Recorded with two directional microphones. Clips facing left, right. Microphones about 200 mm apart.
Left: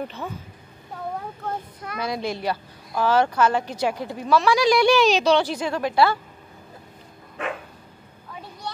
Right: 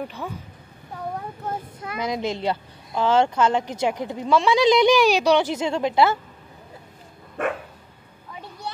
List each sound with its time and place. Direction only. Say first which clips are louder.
0.2 s speech: even; centre (ahead or behind)
1.8 s speech: right 3 dB; 20° right (ahead or behind)